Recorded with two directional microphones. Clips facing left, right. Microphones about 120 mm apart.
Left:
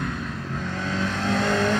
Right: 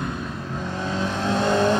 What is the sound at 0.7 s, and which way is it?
Vehicle, 20° right (ahead or behind).